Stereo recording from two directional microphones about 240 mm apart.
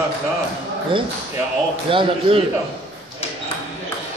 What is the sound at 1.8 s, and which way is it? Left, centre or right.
Speech, right.